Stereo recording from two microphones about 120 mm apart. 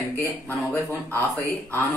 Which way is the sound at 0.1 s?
20° left (ahead or behind).